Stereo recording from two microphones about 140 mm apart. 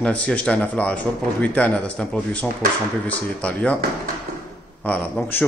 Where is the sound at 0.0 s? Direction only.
10° left (ahead or behind).